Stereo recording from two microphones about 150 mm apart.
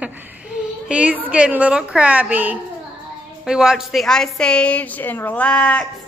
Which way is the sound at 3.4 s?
5° right (ahead or behind).